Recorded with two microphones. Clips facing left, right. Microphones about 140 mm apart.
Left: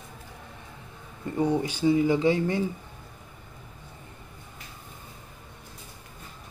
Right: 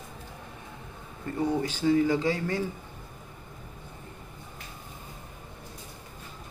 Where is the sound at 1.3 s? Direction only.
15° left (ahead or behind).